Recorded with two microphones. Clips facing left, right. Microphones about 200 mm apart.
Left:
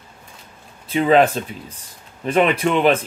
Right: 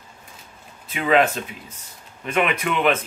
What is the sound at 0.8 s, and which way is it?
Speech, 35° left (ahead or behind).